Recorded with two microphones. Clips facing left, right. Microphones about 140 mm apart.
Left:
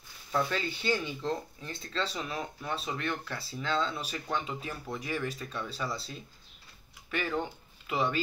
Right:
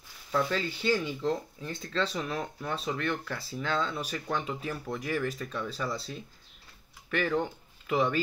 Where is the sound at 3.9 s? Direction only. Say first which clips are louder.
Right 2 dB; 50° right (ahead or behind).